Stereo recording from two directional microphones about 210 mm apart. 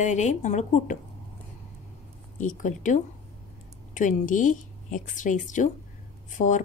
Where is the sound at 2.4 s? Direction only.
35° left (ahead or behind).